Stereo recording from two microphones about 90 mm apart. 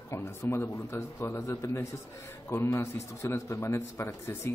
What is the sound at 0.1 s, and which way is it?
A man's voice, 30° left (ahead or behind).